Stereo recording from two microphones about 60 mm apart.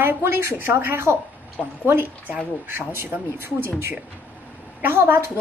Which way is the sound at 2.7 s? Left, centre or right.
Right.